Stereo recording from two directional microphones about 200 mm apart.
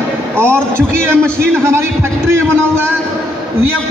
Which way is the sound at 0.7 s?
10° right (ahead or behind).